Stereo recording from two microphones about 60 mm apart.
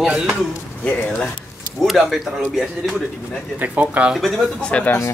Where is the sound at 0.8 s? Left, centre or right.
Left.